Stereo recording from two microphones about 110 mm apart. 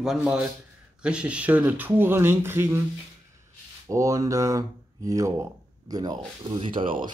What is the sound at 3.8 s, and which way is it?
Speech, 30° right (ahead or behind).